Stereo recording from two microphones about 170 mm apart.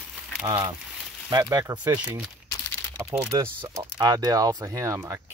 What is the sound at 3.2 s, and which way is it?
Speech, 20° right (ahead or behind).